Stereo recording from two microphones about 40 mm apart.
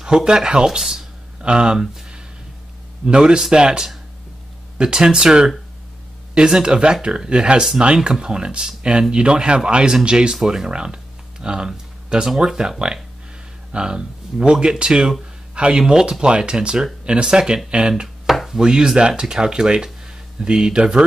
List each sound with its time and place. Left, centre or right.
0.0 s speech: centre
1.4 s speech: right
3.1 s speech: centre
10.3 s speech: centre
10.7 s a sound: right
12.4 s speech: centre
18.0 s chopping: centre
18.6 s speech: centre